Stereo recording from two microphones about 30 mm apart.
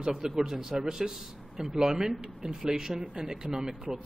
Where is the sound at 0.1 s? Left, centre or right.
Centre.